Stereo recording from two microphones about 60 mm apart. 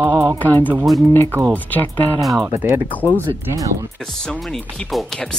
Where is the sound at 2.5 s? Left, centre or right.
Right.